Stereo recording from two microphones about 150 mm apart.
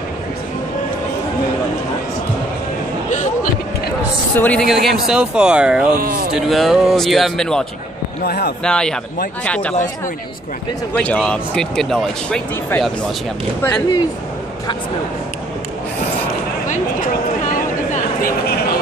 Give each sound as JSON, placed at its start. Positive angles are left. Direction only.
{"t": 4.4, "sound": "speech", "side_deg": 10}
{"t": 4.8, "sound": "speech", "side_deg": -5}
{"t": 5.9, "sound": "speech", "side_deg": -80}
{"t": 6.3, "sound": "speech", "side_deg": 0}
{"t": 8.2, "sound": "speech", "side_deg": 90}
{"t": 8.6, "sound": "speech", "side_deg": 5}
{"t": 11.0, "sound": "speech", "side_deg": 10}
{"t": 13.6, "sound": "speech", "side_deg": 10}
{"t": 17.5, "sound": "vehicle", "side_deg": 65}